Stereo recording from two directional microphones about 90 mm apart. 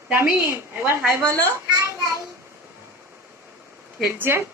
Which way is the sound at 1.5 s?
35° right (ahead or behind).